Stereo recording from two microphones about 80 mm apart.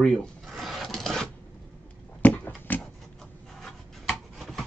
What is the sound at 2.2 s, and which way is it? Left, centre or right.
Dog, left.